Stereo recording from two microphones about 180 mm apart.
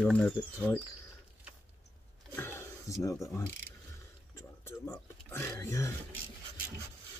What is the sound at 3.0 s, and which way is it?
Speech, 15° left (ahead or behind).